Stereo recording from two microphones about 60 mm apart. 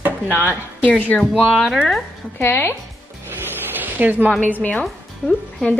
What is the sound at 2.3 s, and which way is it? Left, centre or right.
Speech, left.